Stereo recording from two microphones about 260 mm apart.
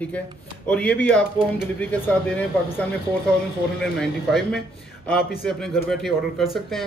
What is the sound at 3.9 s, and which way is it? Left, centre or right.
Speech, centre.